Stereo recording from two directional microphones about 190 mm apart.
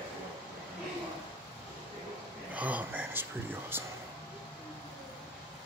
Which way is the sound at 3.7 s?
10° right (ahead or behind).